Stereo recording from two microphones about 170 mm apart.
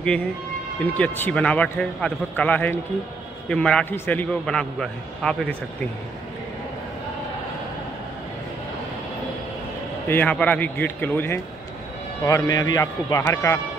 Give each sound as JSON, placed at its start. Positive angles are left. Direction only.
{"t": 0.8, "sound": "a man's voice", "side_deg": 10}
{"t": 10.0, "sound": "a man's voice", "side_deg": 10}